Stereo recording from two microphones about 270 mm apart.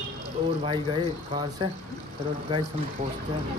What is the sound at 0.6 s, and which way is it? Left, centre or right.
Speech, centre.